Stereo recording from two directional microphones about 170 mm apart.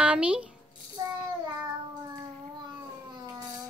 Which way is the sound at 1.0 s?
25° right (ahead or behind).